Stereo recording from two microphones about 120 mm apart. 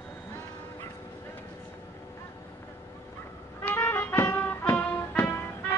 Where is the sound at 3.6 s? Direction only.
15° left (ahead or behind).